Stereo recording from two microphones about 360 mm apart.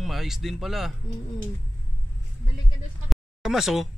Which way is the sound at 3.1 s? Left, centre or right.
Centre.